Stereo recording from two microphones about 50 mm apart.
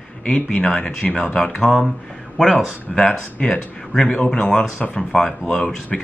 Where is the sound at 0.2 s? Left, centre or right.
Centre.